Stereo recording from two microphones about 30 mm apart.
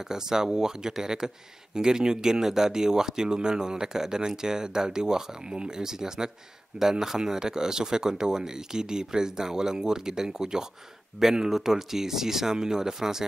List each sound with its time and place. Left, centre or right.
0.1 s speech: centre
11.2 s speech: centre